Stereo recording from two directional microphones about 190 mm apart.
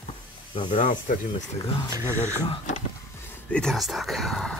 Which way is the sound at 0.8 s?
40° left (ahead or behind).